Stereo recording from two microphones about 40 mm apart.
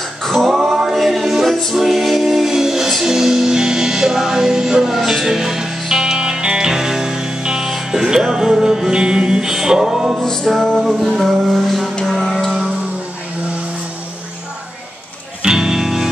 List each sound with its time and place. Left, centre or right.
0.2 s male singing: centre
0.6 s music: centre
10.2 s music: centre
15.4 s music: centre